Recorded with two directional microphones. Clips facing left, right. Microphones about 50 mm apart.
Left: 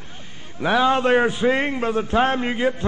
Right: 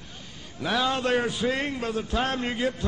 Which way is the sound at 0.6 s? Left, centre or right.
Left.